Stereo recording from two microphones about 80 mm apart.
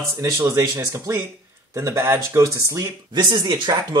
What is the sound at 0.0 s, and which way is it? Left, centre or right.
Speech, right.